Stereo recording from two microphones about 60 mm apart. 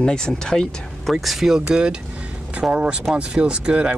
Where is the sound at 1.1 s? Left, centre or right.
Centre.